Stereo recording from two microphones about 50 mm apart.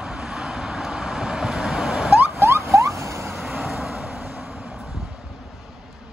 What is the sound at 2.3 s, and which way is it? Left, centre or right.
Rodents, right.